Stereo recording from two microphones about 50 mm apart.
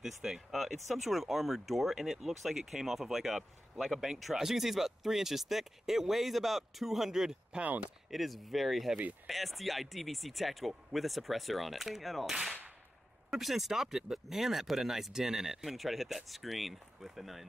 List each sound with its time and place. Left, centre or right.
0.0 s speech: centre
7.6 s speech: right
8.1 s speech: centre